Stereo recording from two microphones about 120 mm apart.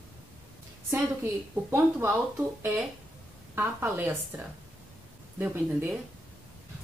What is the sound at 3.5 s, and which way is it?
A woman's voice, 15° right (ahead or behind).